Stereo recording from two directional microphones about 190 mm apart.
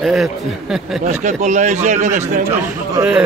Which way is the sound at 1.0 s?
40° right (ahead or behind).